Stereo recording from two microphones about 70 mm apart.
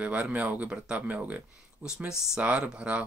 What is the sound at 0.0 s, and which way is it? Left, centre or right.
Speech, right.